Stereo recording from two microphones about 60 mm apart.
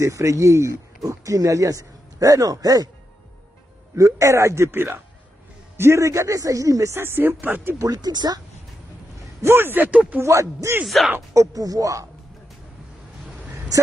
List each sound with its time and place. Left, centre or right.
0.0 s speech: right
3.9 s speech: right
6.9 s speech: right
7.8 s speech: right
9.5 s speech: right
9.8 s speech: right
10.2 s speech: right